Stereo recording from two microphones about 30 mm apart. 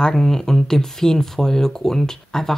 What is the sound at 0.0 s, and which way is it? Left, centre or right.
Speech, centre.